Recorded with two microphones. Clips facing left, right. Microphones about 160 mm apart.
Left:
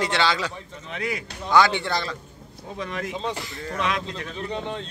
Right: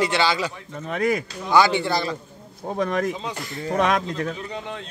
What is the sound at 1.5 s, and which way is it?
Speech, 5° right (ahead or behind).